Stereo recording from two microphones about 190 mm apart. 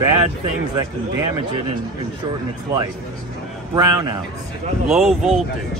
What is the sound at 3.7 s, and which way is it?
Speech, 20° right (ahead or behind).